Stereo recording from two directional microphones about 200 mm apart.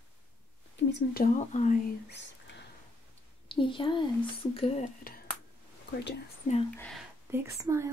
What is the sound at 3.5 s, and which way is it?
A woman's voice, 25° left (ahead or behind).